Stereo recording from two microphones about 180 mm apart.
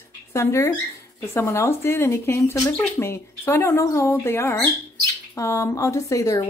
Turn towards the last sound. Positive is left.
turn(degrees=20)  # may be behind; listen again after turning